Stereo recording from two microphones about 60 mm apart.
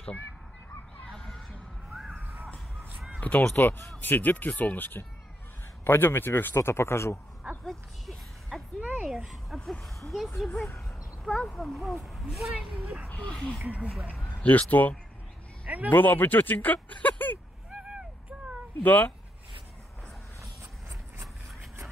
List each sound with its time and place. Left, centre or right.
1.1 s a sound: centre
2.1 s a sound: right
3.2 s a man's voice: left
8.1 s music: centre
9.0 s speech: centre
13.3 s speech: centre
13.7 s speech: right
14.3 s speech: left
15.6 s a sound: right
15.9 s speech: left
17.6 s a sound: centre
18.8 s speech: left